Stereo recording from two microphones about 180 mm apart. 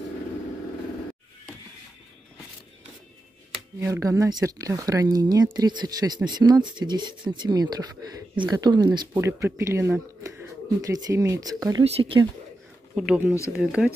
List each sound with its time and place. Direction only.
3.8 s speech: 15° right (ahead or behind)
11.8 s speech: 30° right (ahead or behind)
12.9 s speech: 5° right (ahead or behind)